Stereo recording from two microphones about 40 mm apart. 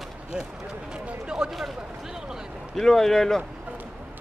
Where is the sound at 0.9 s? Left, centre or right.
Right.